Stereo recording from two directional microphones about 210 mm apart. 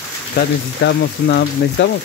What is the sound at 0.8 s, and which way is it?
Speech, 55° left (ahead or behind).